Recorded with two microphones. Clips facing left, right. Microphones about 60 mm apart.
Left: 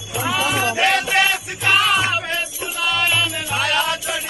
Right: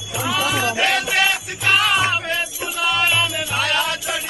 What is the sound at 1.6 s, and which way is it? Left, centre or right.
Music, centre.